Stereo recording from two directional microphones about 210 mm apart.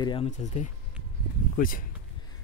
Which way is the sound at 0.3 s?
35° left (ahead or behind).